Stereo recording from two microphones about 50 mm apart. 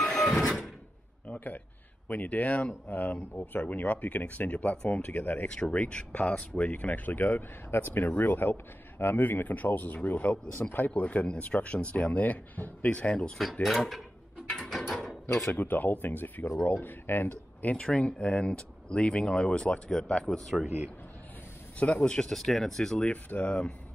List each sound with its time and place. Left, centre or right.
0.0 s a sound: centre
1.2 s a sound: left
2.0 s a man's voice: left
5.5 s a man's voice: left
12.9 s speech: left
13.4 s speech: centre
15.5 s a man's voice: left
17.8 s speech: left; by 20.6 s centre
21.7 s speech: left
22.0 s speech: centre
22.3 s speech: centre
23.0 s speech: left